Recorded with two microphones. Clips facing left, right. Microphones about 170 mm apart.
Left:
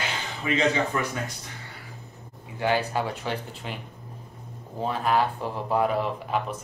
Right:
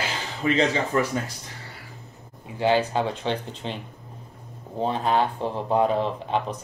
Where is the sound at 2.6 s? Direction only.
20° right (ahead or behind).